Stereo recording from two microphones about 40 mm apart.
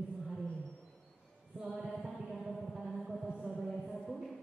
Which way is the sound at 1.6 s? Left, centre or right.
Right.